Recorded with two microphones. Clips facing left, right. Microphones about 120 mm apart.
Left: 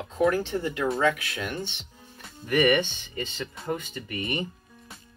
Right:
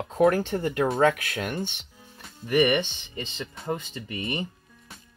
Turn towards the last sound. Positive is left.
turn(degrees=-25)  # may be behind; listen again after turning